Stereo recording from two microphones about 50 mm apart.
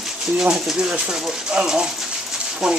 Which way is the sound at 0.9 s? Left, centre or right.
Centre.